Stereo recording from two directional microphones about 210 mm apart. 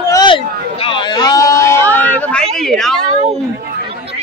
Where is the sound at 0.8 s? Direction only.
25° left (ahead or behind); by 3.0 s centre (ahead or behind).